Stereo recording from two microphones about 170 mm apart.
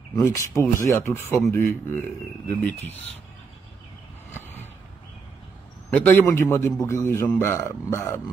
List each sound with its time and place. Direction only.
0.1 s a man's voice: 20° left (ahead or behind)
5.9 s a man's voice: 10° left (ahead or behind)